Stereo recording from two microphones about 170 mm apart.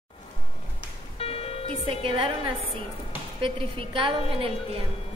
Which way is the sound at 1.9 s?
35° right (ahead or behind).